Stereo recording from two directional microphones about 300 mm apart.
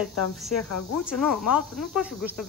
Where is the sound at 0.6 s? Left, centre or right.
Left.